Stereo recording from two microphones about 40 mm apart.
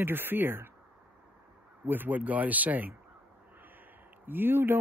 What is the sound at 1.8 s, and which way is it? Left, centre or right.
Speech, right.